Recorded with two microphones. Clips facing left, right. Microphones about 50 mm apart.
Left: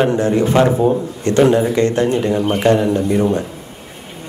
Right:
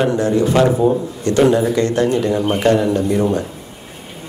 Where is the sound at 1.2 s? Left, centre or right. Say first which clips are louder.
Left 1 dB; left.